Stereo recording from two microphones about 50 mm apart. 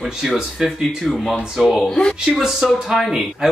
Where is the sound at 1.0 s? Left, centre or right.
Centre.